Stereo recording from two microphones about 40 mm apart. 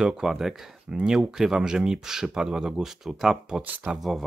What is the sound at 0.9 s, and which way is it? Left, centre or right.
Speech, right.